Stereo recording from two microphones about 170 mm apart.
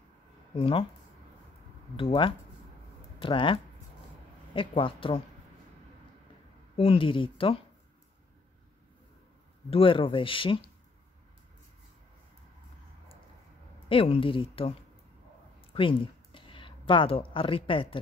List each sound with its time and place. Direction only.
0.6 s speech: 30° left (ahead or behind)
2.0 s speech: 30° left (ahead or behind)
4.6 s speech: 30° left (ahead or behind)
6.8 s speech: 30° left (ahead or behind)
9.7 s speech: 30° left (ahead or behind)
13.8 s speech: 35° left (ahead or behind)
15.7 s speech: 30° left (ahead or behind)